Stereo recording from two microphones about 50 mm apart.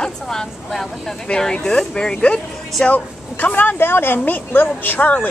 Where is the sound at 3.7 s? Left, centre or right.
Left.